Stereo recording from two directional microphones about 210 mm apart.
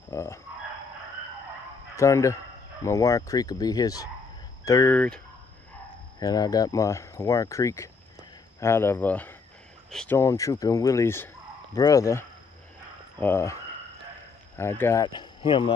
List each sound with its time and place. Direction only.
0.1 s speech: 10° left (ahead or behind)
2.0 s speech: 15° left (ahead or behind)
6.1 s speech: 15° left (ahead or behind)
14.6 s speech: 10° left (ahead or behind)